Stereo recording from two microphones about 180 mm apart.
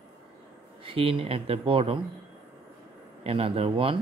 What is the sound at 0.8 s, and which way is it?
Speech, 30° right (ahead or behind).